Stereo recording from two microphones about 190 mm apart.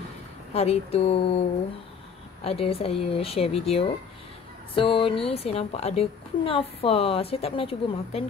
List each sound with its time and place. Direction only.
0.5 s a woman's voice: 30° left (ahead or behind)
2.4 s a woman's voice: 30° left (ahead or behind)